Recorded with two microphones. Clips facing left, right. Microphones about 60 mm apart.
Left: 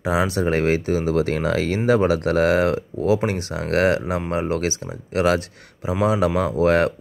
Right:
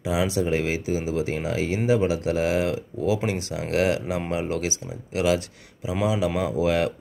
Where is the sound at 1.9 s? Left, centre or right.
Left.